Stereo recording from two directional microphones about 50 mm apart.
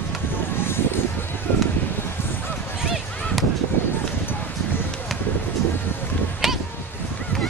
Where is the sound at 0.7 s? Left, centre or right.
Left.